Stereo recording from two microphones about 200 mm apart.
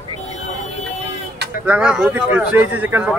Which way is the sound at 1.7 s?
5° right (ahead or behind).